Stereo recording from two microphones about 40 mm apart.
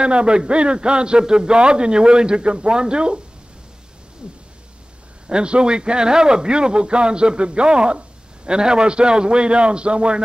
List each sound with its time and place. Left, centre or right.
0.0 s a man's voice: right
4.2 s a man's voice: right